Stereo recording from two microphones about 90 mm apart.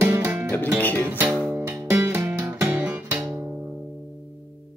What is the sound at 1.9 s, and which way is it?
Music, 30° right (ahead or behind).